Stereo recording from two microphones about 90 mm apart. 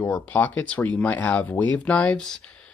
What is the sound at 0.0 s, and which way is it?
Speech, 20° left (ahead or behind).